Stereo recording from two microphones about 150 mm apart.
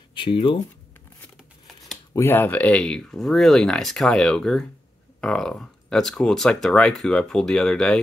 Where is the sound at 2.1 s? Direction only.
15° left (ahead or behind).